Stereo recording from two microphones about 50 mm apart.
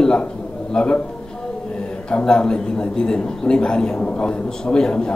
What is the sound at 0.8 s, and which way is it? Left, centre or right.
Speech, centre.